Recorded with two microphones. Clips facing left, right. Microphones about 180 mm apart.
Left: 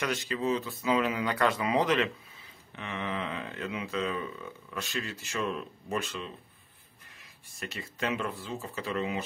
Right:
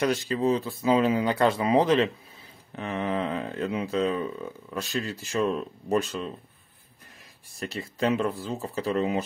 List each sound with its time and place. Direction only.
0.0 s speech: 35° right (ahead or behind)
7.5 s speech: 35° right (ahead or behind)